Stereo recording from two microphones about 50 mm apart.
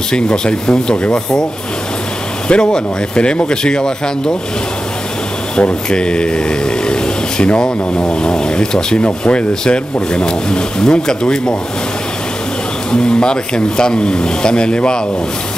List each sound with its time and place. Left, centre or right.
0.1 s speech: centre
2.4 s speech: centre
5.6 s speech: left
12.9 s speech: centre